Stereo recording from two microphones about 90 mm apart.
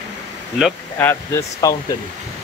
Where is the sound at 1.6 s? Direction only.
40° left (ahead or behind).